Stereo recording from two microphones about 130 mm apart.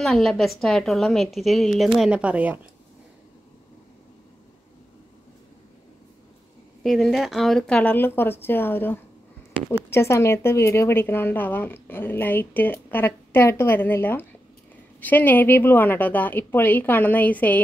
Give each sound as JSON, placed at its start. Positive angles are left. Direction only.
{"t": 0.0, "sound": "a woman's voice", "side_deg": 0}
{"t": 6.8, "sound": "speech", "side_deg": 0}